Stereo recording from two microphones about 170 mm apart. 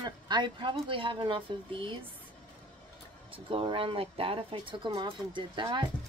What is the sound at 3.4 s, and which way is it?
Speech, 35° right (ahead or behind).